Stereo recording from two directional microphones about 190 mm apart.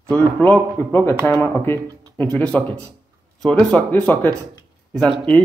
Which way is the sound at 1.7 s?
20° right (ahead or behind).